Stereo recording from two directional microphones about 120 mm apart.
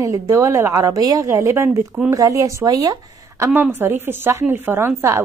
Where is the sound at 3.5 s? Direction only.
15° right (ahead or behind).